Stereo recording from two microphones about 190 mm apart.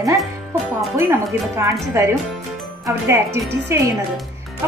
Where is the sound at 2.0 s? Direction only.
15° right (ahead or behind).